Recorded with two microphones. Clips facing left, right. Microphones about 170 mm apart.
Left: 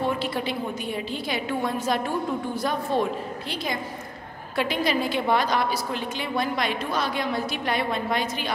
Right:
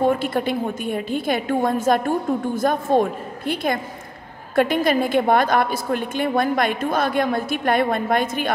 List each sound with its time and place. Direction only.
0.0 s a woman's voice: 50° right (ahead or behind)